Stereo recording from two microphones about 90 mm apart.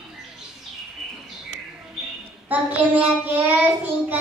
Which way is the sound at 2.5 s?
15° right (ahead or behind).